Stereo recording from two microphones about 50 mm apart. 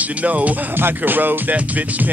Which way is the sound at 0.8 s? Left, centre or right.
Right.